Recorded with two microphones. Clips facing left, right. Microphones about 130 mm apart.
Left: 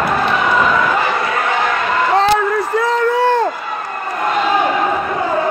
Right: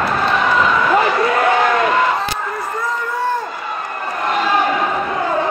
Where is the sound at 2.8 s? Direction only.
85° left.